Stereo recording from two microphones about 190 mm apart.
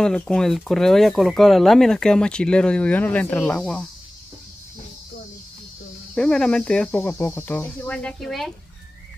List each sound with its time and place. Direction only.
0.0 s speech: 5° left (ahead or behind)
6.1 s speech: 5° left (ahead or behind)